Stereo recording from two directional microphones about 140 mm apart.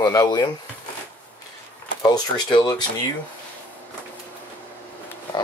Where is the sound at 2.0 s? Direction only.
30° left (ahead or behind).